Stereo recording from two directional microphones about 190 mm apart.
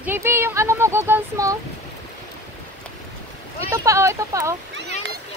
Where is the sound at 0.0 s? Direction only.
10° right (ahead or behind).